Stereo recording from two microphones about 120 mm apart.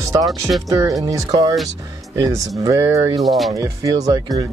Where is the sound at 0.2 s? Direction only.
Centre (ahead or behind).